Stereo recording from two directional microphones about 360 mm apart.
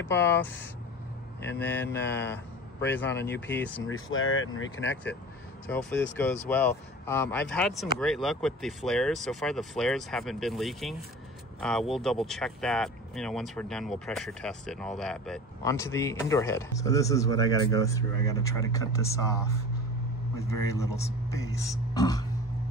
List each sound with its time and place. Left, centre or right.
0.0 s speech: centre
1.6 s speech: centre
3.8 s speech: left
5.7 s speech: centre